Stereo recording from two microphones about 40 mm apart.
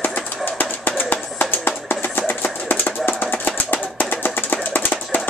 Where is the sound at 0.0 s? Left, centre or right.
Left.